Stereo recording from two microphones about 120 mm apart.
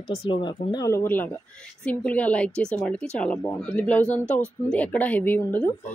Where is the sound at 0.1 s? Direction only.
40° left (ahead or behind).